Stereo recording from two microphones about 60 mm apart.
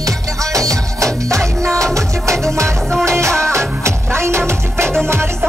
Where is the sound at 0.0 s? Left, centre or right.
Right.